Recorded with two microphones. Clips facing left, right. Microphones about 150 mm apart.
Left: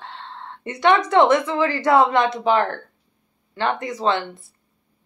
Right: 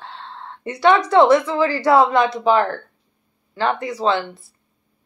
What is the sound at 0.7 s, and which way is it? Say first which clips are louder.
Speech: right 2 dB; 35° right (ahead or behind).